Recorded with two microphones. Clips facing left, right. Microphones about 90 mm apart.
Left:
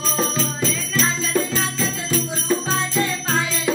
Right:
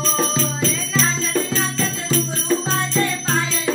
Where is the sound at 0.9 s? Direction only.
10° left (ahead or behind).